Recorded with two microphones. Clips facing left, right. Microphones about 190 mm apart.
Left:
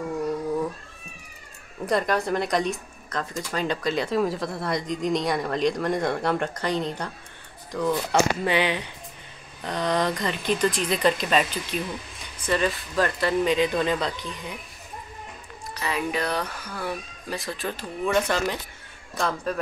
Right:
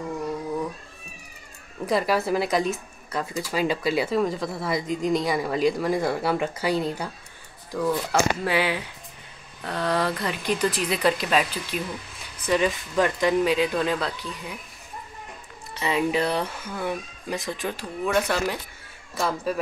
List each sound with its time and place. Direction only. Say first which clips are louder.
1.9 s speech: right 1 dB; 5° right (ahead or behind)
13.4 s speech: even; 5° right (ahead or behind)
15.7 s speech: right 4 dB; 25° right (ahead or behind); by 19.6 s 5° right (ahead or behind)